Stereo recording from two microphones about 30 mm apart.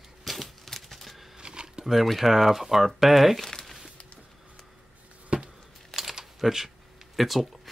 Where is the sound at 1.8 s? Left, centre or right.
Centre.